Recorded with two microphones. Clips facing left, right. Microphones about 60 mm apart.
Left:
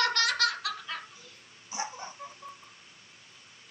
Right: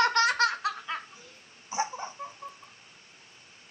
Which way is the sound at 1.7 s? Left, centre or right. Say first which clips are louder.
Right 5 dB; right.